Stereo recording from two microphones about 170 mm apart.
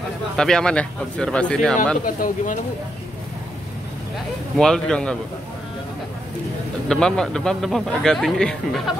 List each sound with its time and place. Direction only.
0.4 s speech: 5° left (ahead or behind)
2.0 s speech: 50° left (ahead or behind)
4.6 s speech: 5° left (ahead or behind)
6.9 s speech: 5° left (ahead or behind)